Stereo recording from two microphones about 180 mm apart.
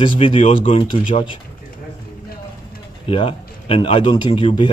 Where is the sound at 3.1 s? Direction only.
30° left (ahead or behind).